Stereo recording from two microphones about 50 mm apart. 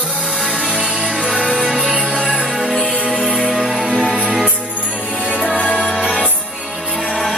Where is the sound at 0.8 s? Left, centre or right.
Centre.